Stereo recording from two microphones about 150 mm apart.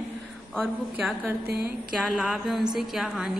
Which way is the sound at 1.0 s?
10° right (ahead or behind).